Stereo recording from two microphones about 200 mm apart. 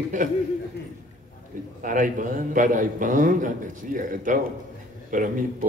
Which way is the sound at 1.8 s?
40° right (ahead or behind).